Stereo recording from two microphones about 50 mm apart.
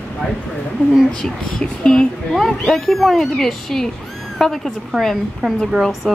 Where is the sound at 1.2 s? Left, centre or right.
Centre.